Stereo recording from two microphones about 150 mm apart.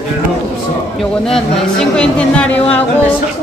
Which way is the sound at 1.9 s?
5° left (ahead or behind).